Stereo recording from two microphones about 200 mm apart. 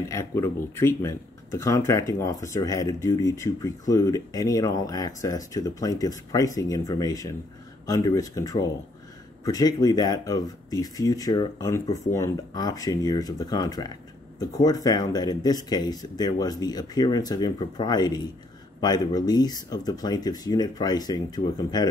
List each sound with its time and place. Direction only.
0.1 s speech: 15° left (ahead or behind)